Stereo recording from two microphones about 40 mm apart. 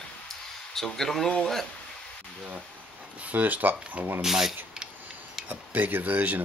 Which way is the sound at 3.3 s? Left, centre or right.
Right.